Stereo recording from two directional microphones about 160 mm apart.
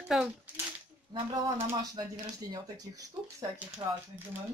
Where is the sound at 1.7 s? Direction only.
25° right (ahead or behind).